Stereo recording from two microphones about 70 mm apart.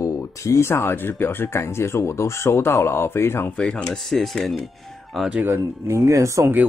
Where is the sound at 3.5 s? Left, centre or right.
Centre.